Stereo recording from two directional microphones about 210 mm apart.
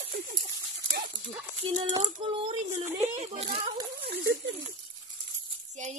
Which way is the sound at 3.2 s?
30° right (ahead or behind).